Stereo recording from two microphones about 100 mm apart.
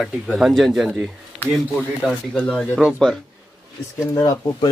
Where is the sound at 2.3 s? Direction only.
10° left (ahead or behind).